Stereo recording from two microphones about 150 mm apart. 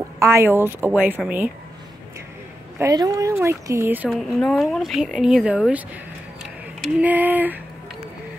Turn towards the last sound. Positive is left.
turn(degrees=-10)  # may be behind; listen again after turning